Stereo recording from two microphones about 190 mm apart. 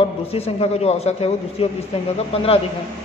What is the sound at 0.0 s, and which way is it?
A man's voice, 30° left (ahead or behind).